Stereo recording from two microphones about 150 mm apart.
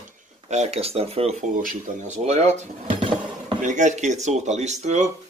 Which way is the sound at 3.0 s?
35° right (ahead or behind).